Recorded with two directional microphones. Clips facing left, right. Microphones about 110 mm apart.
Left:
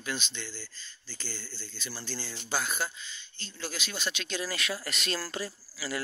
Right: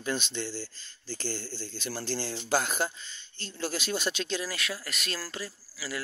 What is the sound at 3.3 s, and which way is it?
Speech, 55° right (ahead or behind).